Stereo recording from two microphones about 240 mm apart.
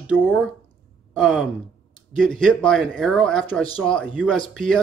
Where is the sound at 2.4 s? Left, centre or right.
Centre.